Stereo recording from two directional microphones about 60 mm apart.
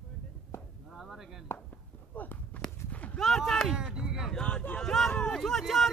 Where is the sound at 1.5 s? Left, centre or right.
Left.